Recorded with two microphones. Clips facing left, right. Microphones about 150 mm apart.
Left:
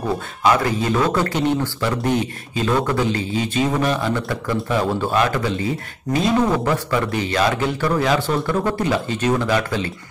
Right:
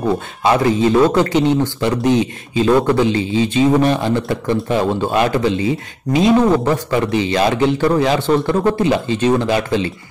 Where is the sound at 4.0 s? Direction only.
25° right (ahead or behind).